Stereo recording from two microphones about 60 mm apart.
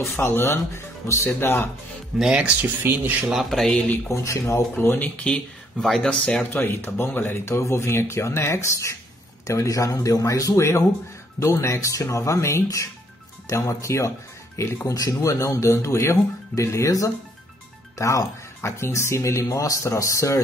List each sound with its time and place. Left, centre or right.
0.2 s speech: left
2.1 s speech: centre
2.8 s speech: right
3.3 s speech: centre
4.1 s speech: left
4.7 s speech: left
5.2 s speech: centre
6.5 s speech: left